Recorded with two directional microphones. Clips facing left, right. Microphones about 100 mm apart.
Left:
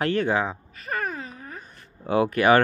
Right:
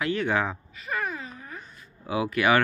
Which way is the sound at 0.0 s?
45° left (ahead or behind).